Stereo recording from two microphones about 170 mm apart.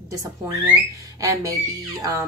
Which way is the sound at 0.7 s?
15° right (ahead or behind).